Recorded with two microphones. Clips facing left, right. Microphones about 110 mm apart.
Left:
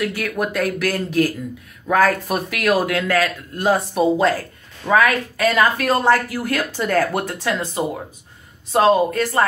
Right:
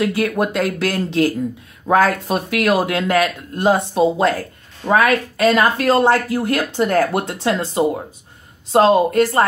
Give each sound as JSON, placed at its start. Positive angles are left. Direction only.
{"t": 0.0, "sound": "speech", "side_deg": -25}